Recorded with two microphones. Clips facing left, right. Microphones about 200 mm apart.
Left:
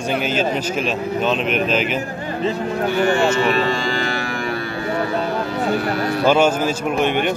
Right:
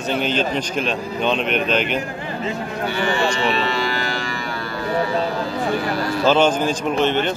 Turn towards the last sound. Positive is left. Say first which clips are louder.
# even
turn(degrees=15)  # may be behind; listen again after turning